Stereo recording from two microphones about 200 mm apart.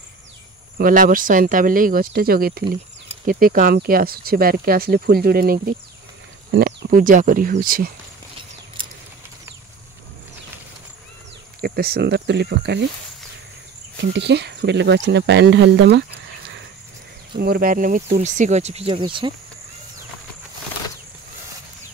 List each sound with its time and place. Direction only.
0.7 s speech: 45° right (ahead or behind)
11.6 s speech: 50° right (ahead or behind)
14.0 s speech: 60° right (ahead or behind)
17.4 s speech: 45° right (ahead or behind); by 19.3 s 25° right (ahead or behind)